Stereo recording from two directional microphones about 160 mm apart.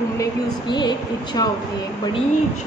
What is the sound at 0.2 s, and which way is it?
A woman's voice, 25° left (ahead or behind).